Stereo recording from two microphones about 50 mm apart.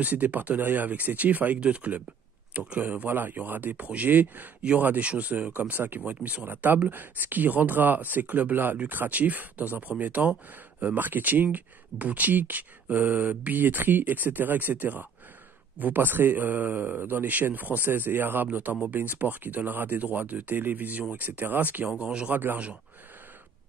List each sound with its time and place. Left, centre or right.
0.0 s speech: right
3.1 s speech: right
22.0 s speech: right
22.3 s speech: right